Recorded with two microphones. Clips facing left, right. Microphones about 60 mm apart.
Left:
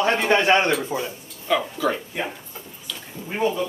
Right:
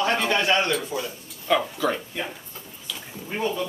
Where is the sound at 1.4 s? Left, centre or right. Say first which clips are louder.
Even; centre.